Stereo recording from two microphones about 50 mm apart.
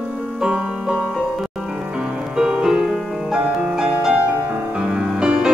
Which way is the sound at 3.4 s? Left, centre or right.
Right.